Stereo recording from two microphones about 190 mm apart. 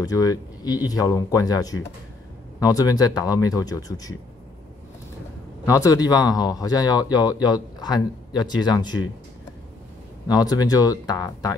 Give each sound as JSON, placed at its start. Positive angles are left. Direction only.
{"t": 0.0, "sound": "speech", "side_deg": 20}
{"t": 5.7, "sound": "speech", "side_deg": 15}
{"t": 10.2, "sound": "speech", "side_deg": 20}